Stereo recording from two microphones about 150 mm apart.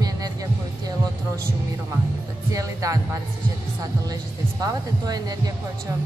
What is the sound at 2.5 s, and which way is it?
Speech, 25° right (ahead or behind).